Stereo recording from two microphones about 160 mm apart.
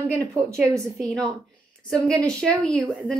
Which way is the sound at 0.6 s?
15° right (ahead or behind).